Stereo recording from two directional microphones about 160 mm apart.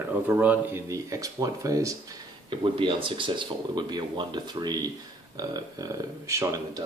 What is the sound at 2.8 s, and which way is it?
Speech, 30° right (ahead or behind).